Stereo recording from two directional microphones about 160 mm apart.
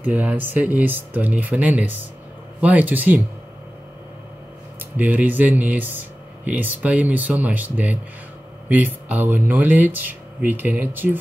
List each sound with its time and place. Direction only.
0.0 s speech: 10° right (ahead or behind)
4.9 s speech: 10° right (ahead or behind)